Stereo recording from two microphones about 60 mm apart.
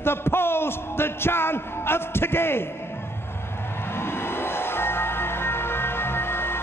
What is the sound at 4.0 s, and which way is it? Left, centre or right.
Music, left.